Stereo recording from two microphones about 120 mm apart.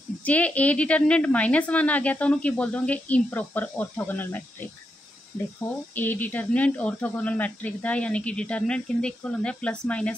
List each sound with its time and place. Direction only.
0.2 s a woman's voice: 10° left (ahead or behind)
5.9 s a woman's voice: 15° left (ahead or behind)